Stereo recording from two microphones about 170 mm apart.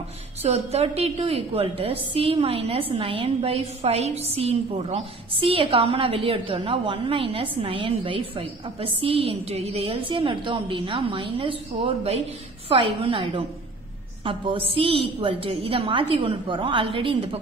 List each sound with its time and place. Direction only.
0.4 s a woman's voice: 40° right (ahead or behind)